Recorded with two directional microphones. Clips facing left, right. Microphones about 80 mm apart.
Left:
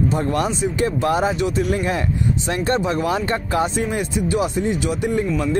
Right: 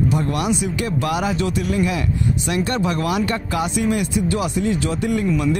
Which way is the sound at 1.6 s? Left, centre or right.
Left.